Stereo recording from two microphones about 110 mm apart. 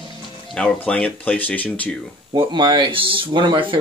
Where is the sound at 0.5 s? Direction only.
10° left (ahead or behind).